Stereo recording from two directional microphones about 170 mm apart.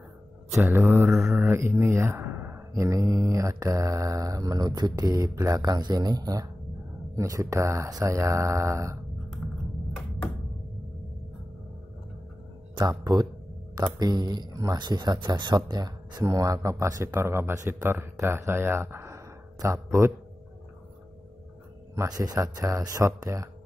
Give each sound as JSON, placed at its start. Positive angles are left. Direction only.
{"t": 0.7, "sound": "mantra", "side_deg": -15}
{"t": 1.1, "sound": "speech", "side_deg": -5}
{"t": 12.7, "sound": "speech", "side_deg": -25}
{"t": 21.9, "sound": "speech", "side_deg": -20}